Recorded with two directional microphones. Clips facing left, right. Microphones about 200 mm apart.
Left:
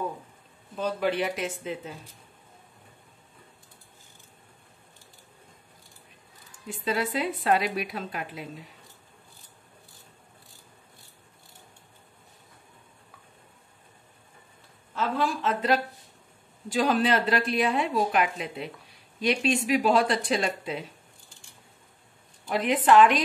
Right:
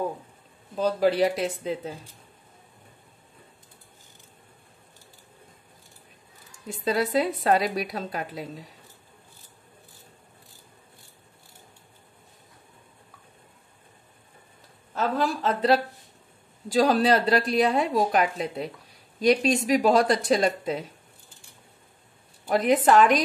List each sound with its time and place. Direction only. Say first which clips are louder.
0.7 s a woman's voice: right 5 dB; 35° right (ahead or behind)
6.7 s a woman's voice: right 4 dB; 40° right (ahead or behind)
15.0 s a woman's voice: right 2 dB; 40° right (ahead or behind)
22.5 s a woman's voice: right 2 dB; 45° right (ahead or behind)